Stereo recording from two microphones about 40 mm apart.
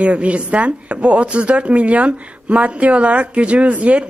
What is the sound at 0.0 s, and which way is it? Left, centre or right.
Speech, right.